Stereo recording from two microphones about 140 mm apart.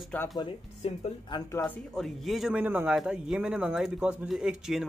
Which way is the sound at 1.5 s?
15° left (ahead or behind).